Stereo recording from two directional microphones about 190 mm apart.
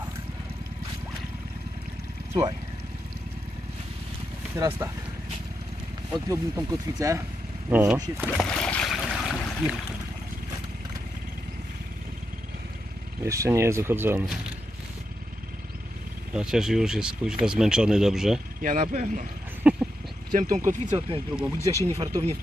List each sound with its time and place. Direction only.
4.6 s speech: 20° right (ahead or behind)
6.1 s speech: 15° right (ahead or behind)
8.4 s a sound: 5° left (ahead or behind)
13.2 s speech: 15° right (ahead or behind)
16.3 s speech: 5° right (ahead or behind)
18.6 s speech: 45° right (ahead or behind)
19.6 s a sound: 10° right (ahead or behind)
20.3 s speech: 45° right (ahead or behind)
21.5 s speech: 15° left (ahead or behind)
21.9 s speech: 20° right (ahead or behind)